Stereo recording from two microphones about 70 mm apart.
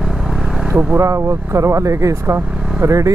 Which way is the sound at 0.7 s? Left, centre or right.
Right.